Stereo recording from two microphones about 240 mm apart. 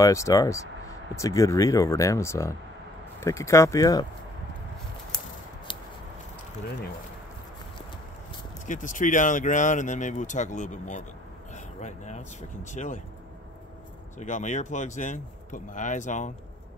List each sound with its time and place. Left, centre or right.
0.0 s speech: centre
8.6 s speech: left
14.1 s speech: left